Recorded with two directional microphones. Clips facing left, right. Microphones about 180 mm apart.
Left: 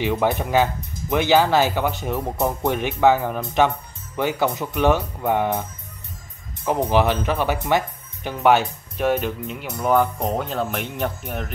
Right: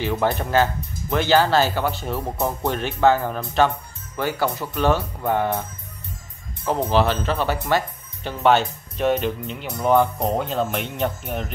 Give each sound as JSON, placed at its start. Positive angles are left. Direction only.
{"t": 0.0, "sound": "speech", "side_deg": 15}